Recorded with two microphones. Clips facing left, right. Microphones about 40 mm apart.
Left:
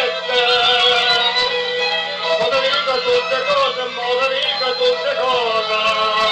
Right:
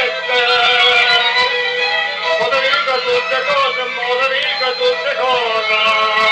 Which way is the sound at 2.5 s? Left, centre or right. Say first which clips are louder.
Right 2 dB; right.